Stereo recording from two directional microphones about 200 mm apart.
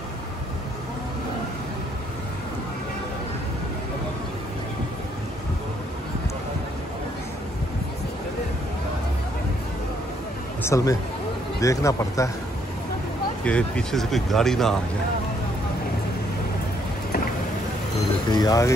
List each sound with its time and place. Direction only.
10.6 s speech: 15° left (ahead or behind)
13.4 s speech: 5° left (ahead or behind)
18.3 s speech: 20° left (ahead or behind)